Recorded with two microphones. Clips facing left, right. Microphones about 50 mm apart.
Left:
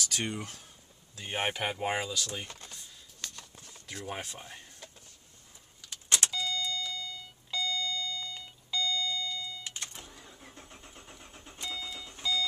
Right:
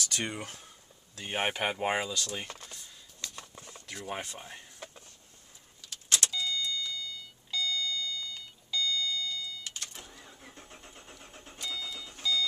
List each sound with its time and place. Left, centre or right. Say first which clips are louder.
0.2 s speech: even; right
1.2 s speech: right 1 dB; centre
3.3 s a sound: right 4 dB; right
3.9 s speech: right 1 dB; centre
4.7 s a sound: right 4 dB; right
5.9 s vehicle: even; left
6.4 s car: even; left
6.9 s alarm clock: even; left
8.6 s vehicle: even; left
9.9 s vehicle: even; centre
11.5 s alarm clock: right 1 dB; centre